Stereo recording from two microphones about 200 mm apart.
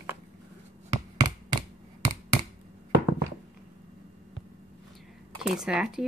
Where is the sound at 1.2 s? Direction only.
20° right (ahead or behind).